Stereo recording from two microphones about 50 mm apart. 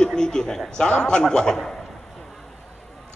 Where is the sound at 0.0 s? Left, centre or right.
Centre.